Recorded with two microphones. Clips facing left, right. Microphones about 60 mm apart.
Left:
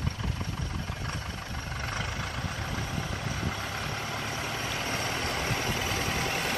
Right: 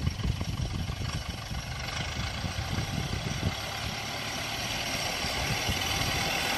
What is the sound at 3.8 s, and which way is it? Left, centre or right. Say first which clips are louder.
Vehicle: left 2 dB; left.